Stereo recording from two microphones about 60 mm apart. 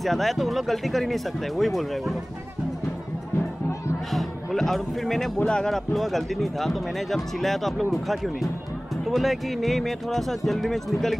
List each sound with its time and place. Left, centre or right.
0.0 s speech: centre
4.1 s speech: centre